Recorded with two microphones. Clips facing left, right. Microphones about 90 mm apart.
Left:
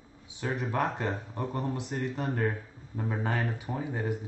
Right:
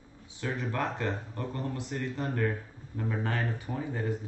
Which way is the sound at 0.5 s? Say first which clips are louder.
Left 3 dB; 15° left (ahead or behind).